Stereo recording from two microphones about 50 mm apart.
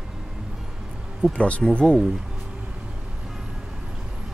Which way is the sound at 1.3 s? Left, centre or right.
Left.